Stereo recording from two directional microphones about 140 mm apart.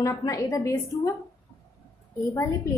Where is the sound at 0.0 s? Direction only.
25° left (ahead or behind).